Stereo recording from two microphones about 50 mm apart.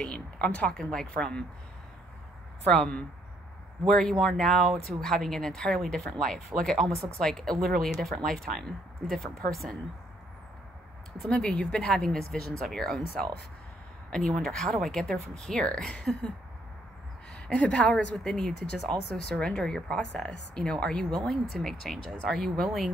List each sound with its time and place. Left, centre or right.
0.0 s speech: centre
2.6 s speech: left
3.8 s speech: centre
11.2 s speech: centre
17.3 s a woman's voice: centre